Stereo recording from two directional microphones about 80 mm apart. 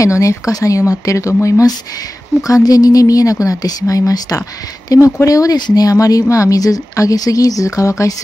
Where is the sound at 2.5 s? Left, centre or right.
Left.